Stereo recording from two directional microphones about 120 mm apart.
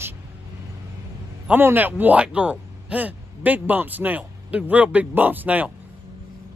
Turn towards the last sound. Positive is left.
turn(degrees=-15)  # may be behind; listen again after turning